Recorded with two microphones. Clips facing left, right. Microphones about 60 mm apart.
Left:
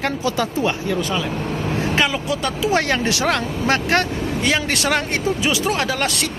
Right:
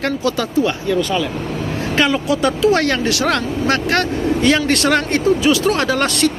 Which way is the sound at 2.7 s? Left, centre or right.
Centre.